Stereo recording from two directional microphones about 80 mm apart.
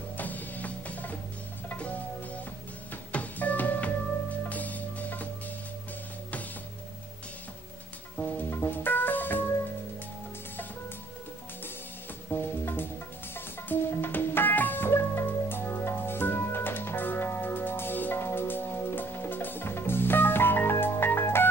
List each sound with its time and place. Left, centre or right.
0.2 s music: left
8.2 s music: left
12.3 s music: left